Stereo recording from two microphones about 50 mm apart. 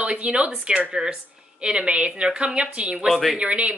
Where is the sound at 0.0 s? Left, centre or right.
Right.